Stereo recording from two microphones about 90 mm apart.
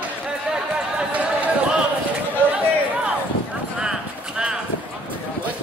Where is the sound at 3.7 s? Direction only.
10° right (ahead or behind).